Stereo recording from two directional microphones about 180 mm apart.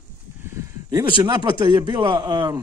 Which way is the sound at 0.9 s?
25° right (ahead or behind).